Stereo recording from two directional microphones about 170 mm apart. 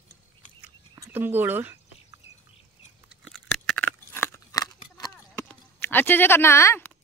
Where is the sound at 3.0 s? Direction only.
Centre (ahead or behind); by 5.1 s 20° left (ahead or behind).